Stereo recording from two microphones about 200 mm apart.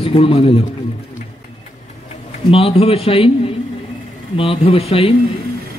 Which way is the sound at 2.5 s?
30° left (ahead or behind).